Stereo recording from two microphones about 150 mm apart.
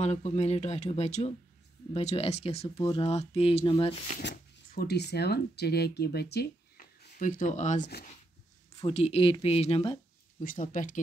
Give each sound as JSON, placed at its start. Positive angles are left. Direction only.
{"t": 0.0, "sound": "speech", "side_deg": 50}
{"t": 4.6, "sound": "speech", "side_deg": 85}
{"t": 8.8, "sound": "speech", "side_deg": 40}
{"t": 10.4, "sound": "speech", "side_deg": 65}